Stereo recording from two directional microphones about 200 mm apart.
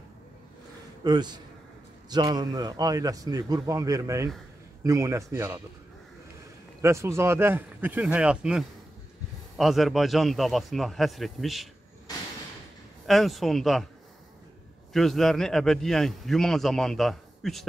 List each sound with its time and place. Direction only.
1.0 s a man's voice: 20° right (ahead or behind)
6.8 s a man's voice: 15° right (ahead or behind)
13.0 s a man's voice: centre (ahead or behind)
14.9 s a man's voice: centre (ahead or behind)